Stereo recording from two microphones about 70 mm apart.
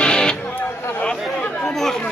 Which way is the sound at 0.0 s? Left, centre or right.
Centre.